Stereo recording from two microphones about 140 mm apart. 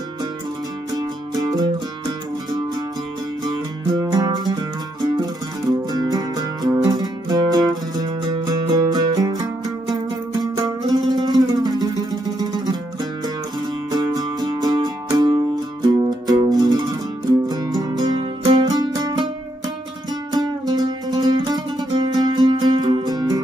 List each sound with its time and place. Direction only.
0.9 s music: 25° right (ahead or behind)
10.4 s music: 30° right (ahead or behind)
13.9 s music: 30° right (ahead or behind)
20.3 s music: 30° right (ahead or behind)